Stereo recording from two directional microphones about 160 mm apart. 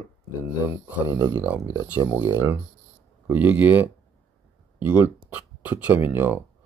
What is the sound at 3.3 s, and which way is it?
Speech, 10° right (ahead or behind).